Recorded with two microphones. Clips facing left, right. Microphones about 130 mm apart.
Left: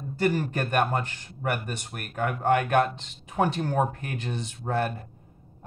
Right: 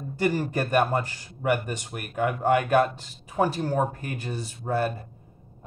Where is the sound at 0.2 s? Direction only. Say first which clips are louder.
Right 1 dB; 10° right (ahead or behind).